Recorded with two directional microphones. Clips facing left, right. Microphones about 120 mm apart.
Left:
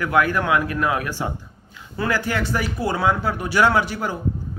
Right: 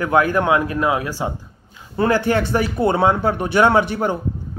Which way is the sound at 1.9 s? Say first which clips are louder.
Right 6 dB; 25° right (ahead or behind).